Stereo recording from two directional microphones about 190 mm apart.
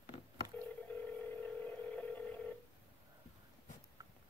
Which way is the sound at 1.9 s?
5° left (ahead or behind).